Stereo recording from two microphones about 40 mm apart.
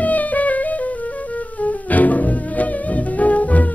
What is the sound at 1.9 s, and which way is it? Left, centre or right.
Music, left.